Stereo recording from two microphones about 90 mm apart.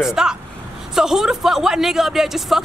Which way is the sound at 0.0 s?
5° right (ahead or behind).